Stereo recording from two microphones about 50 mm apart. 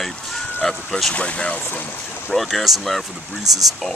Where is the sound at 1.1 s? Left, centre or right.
Left.